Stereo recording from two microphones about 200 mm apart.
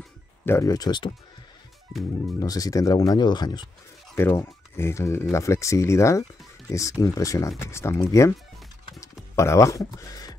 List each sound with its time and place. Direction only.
0.5 s speech: 15° left (ahead or behind)
2.4 s speech: 20° left (ahead or behind)